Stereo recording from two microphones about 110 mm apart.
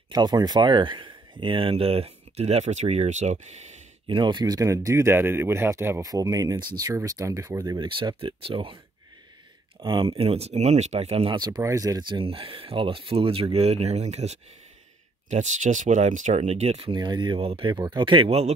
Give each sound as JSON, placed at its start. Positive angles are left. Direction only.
{"t": 0.1, "sound": "speech", "side_deg": -40}
{"t": 4.1, "sound": "speech", "side_deg": -45}
{"t": 4.6, "sound": "speech", "side_deg": -30}
{"t": 9.8, "sound": "speech", "side_deg": -50}
{"t": 11.3, "sound": "speech", "side_deg": -40}
{"t": 12.1, "sound": "speech", "side_deg": -55}
{"t": 16.9, "sound": "speech", "side_deg": -40}
{"t": 17.4, "sound": "speech", "side_deg": -55}